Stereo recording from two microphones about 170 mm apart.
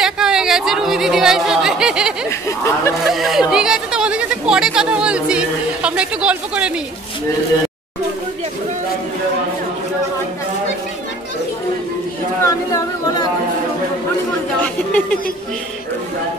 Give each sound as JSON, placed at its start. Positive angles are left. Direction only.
{"t": 0.0, "sound": "chatter", "side_deg": -5}
{"t": 2.2, "sound": "speech", "side_deg": 15}
{"t": 3.1, "sound": "speech", "side_deg": 0}
{"t": 12.4, "sound": "singing", "side_deg": 20}
{"t": 14.6, "sound": "speech", "side_deg": 5}